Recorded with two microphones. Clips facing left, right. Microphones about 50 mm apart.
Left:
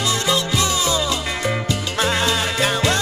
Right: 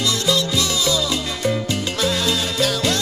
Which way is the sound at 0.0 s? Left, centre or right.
Left.